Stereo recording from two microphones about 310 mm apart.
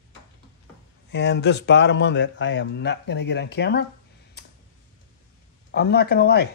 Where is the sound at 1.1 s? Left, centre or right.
Left.